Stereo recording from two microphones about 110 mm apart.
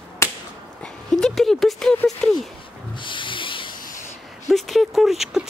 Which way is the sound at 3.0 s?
50° left (ahead or behind).